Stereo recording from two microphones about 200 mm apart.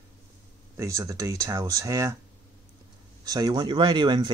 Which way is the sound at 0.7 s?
15° right (ahead or behind).